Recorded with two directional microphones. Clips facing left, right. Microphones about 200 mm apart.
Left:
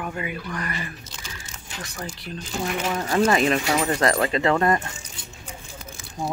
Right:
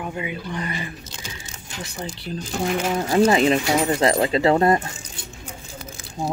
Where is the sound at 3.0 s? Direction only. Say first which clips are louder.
Right 3 dB; 15° right (ahead or behind).